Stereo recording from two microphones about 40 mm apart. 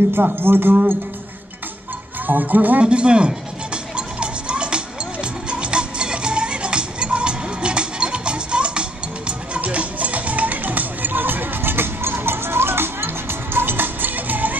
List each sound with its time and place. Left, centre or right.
0.1 s speech: right
2.2 s speech: right
2.8 s music: right